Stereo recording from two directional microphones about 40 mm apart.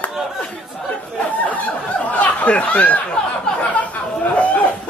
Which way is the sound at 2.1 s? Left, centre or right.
Left.